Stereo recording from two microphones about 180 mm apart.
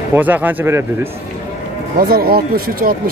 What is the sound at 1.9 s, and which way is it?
Speech, 55° right (ahead or behind).